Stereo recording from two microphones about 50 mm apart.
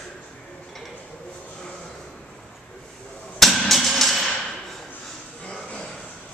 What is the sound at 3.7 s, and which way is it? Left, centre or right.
Music, centre.